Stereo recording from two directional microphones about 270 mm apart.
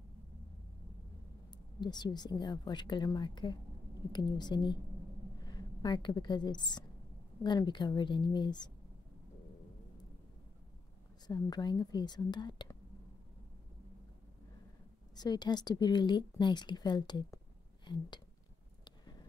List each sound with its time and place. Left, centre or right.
1.5 s a woman's voice: centre
11.2 s a woman's voice: centre
15.1 s a woman's voice: centre